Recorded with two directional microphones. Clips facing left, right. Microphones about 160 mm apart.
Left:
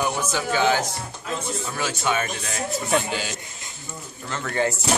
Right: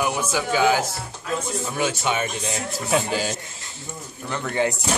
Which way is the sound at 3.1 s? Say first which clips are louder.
Right 4 dB; 40° right (ahead or behind).